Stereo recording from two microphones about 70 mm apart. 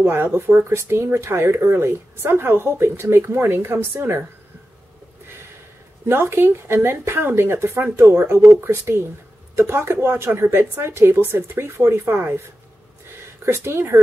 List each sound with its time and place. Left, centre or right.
0.0 s speech: right
6.0 s speech: right
13.5 s speech: right